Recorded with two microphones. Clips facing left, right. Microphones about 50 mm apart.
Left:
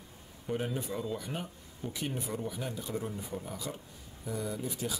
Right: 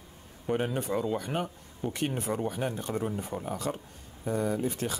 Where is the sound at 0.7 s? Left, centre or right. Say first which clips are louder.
Right 6 dB; right.